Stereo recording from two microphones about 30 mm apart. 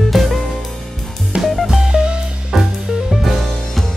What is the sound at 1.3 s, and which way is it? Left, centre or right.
Music, right.